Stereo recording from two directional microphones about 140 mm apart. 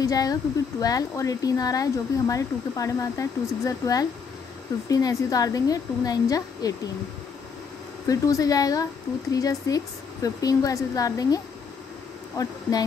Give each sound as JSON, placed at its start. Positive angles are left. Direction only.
{"t": 0.0, "sound": "speech", "side_deg": 25}
{"t": 8.1, "sound": "speech", "side_deg": 25}